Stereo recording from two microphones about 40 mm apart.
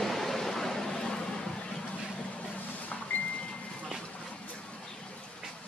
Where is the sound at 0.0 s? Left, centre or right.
Centre.